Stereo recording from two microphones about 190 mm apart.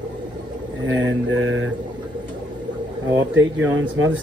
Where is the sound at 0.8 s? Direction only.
90° right.